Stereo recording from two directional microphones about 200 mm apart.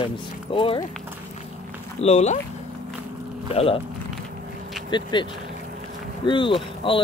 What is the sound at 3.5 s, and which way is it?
Speech, 30° left (ahead or behind).